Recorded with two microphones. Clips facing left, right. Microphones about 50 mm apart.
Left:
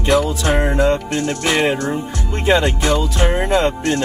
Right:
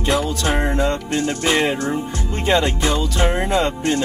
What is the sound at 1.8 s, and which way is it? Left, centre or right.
Music, centre.